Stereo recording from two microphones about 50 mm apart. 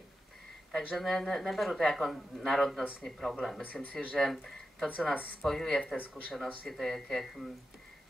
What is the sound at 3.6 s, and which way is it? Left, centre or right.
Speech, left.